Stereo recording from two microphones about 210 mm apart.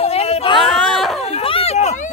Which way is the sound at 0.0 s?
30° left (ahead or behind).